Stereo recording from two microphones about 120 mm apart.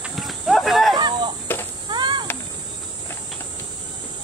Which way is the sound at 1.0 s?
40° right (ahead or behind).